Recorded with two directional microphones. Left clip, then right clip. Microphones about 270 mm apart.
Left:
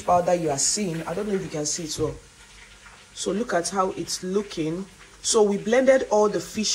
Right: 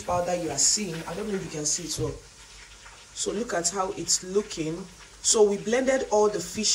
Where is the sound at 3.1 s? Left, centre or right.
Centre.